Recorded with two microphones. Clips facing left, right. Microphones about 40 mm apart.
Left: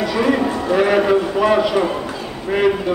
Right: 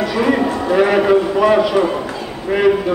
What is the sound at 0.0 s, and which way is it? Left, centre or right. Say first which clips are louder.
A man's voice: right 1 dB; centre.